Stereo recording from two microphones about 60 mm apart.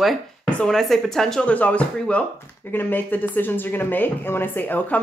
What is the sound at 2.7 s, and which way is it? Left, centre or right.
Speech, left.